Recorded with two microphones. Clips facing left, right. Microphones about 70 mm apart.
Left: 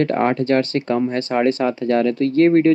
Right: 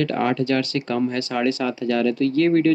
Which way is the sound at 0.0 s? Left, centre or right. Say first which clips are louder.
Left 3 dB; left.